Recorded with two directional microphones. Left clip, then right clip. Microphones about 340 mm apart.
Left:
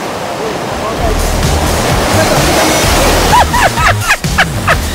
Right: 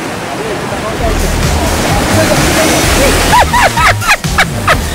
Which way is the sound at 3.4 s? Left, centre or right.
Centre.